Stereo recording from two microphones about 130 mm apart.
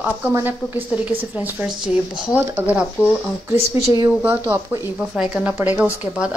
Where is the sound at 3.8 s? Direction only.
25° right (ahead or behind).